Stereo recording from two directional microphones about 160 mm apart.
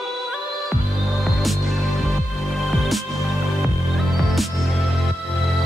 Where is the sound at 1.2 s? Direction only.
Centre (ahead or behind).